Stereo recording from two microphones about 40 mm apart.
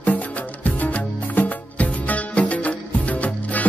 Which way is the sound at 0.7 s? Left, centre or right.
Left.